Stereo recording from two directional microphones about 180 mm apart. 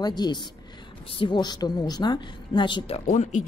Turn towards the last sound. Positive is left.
turn(degrees=45)  # may be behind; listen again after turning